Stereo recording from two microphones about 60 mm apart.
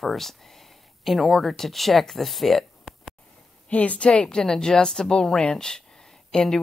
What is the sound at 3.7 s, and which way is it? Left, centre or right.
Speech, left.